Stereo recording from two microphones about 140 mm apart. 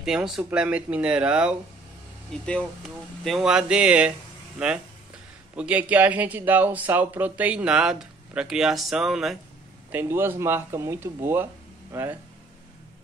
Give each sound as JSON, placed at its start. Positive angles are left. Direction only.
{"t": 0.0, "sound": "speech", "side_deg": -5}
{"t": 2.6, "sound": "speech", "side_deg": 0}
{"t": 9.8, "sound": "speech", "side_deg": -15}